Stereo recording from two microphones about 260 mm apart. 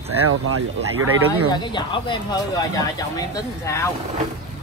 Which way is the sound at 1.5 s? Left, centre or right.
Centre.